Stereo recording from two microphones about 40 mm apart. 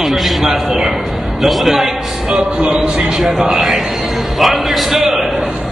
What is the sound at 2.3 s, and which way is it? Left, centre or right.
Speech, right.